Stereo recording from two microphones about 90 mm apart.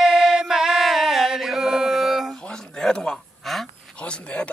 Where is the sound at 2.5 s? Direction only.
5° left (ahead or behind).